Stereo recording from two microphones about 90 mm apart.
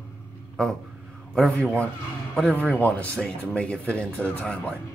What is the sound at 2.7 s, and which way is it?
Speech, 15° left (ahead or behind).